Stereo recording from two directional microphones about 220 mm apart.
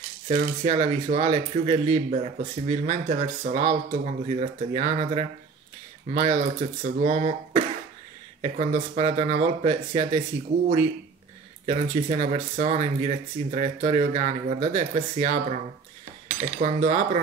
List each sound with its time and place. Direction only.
0.3 s speech: 35° right (ahead or behind)
11.6 s speech: 30° right (ahead or behind)